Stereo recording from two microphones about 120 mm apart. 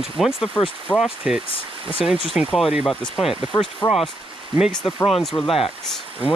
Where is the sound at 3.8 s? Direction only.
35° left (ahead or behind).